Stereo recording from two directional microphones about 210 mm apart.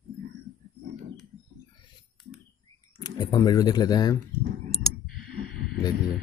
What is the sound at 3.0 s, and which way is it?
Speech, 20° left (ahead or behind).